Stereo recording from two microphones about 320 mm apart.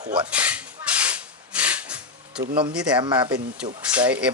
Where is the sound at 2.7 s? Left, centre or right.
Centre.